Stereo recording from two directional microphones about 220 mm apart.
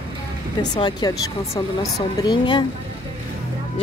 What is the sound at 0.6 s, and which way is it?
Speech, 20° left (ahead or behind).